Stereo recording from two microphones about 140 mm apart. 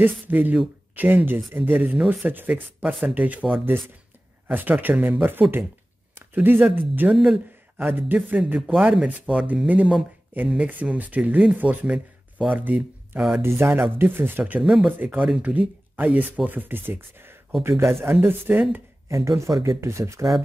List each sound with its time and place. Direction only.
0.0 s speech: 10° right (ahead or behind)